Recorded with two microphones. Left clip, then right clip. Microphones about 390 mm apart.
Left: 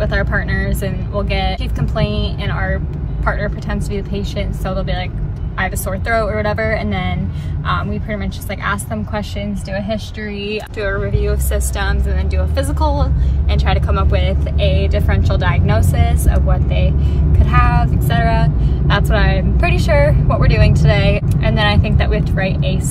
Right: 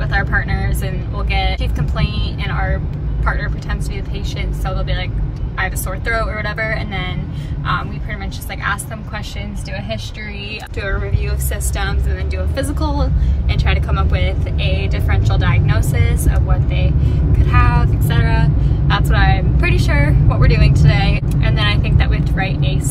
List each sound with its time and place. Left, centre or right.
0.0 s a woman's voice: centre
10.5 s a woman's voice: centre